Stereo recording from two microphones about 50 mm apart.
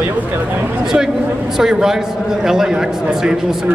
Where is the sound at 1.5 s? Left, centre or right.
Centre.